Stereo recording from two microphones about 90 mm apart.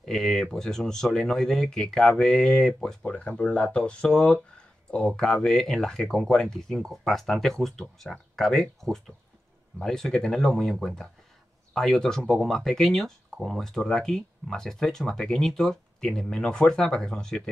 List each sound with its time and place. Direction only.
0.0 s speech: 5° left (ahead or behind)